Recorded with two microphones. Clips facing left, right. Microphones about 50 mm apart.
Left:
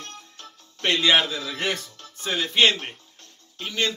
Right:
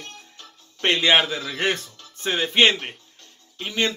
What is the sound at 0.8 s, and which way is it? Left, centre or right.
Speech, right.